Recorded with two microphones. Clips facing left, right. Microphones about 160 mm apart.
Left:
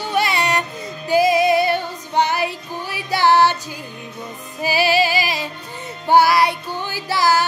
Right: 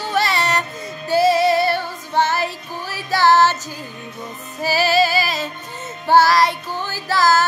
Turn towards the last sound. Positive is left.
turn(degrees=15)  # may be behind; listen again after turning